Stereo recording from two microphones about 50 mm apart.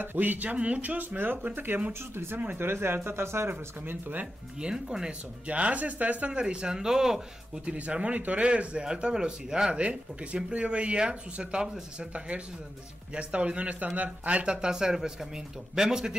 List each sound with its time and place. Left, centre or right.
0.0 s speech: right
4.6 s speech: centre
5.5 s speech: right; by 7.6 s centre
7.6 s speech: right
13.1 s speech: right